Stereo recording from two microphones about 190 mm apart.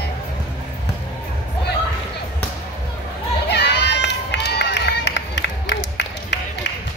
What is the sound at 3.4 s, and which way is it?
Run, 60° left (ahead or behind).